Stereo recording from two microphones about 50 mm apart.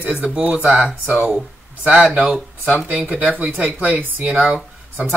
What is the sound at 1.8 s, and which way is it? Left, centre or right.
Speech, right.